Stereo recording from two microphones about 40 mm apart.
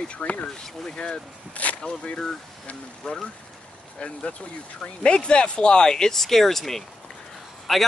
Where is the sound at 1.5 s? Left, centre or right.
Left.